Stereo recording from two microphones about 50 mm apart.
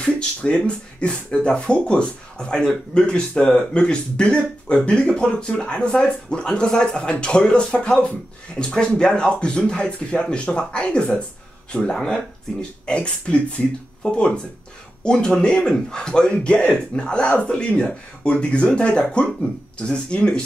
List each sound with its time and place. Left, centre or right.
0.0 s speech: centre